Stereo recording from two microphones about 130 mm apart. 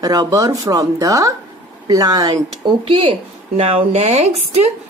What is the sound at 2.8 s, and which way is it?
Speech, 45° right (ahead or behind).